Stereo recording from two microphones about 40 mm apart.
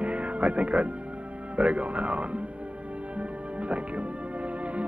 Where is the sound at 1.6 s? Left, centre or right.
Right.